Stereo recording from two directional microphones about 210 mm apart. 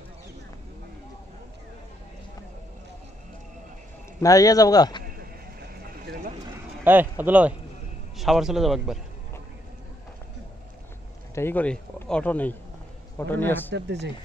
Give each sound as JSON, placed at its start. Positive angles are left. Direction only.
{"t": 4.2, "sound": "speech", "side_deg": 15}
{"t": 5.0, "sound": "a sound", "side_deg": -45}
{"t": 6.8, "sound": "a man's voice", "side_deg": -10}
{"t": 11.3, "sound": "speech", "side_deg": 10}
{"t": 13.7, "sound": "speech", "side_deg": -55}